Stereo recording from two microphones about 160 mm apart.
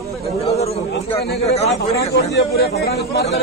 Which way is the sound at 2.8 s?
90° left.